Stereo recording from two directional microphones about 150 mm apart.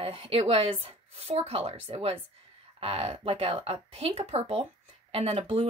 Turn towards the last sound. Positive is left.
turn(degrees=-40)  # may be behind; listen again after turning